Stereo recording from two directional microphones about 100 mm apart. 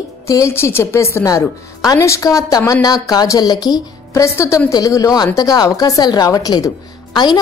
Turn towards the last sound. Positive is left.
turn(degrees=45)  # may be behind; listen again after turning